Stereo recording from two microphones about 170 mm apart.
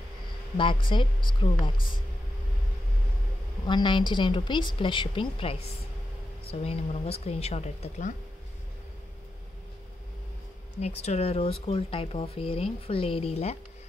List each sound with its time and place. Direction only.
0.6 s a woman's voice: 30° left (ahead or behind)
3.6 s a woman's voice: 30° left (ahead or behind)
6.6 s speech: 35° left (ahead or behind)
10.8 s speech: 40° left (ahead or behind)